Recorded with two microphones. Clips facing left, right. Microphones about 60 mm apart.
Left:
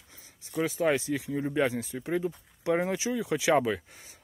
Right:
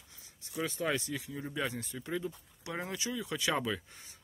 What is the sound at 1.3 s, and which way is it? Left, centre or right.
Speech, left.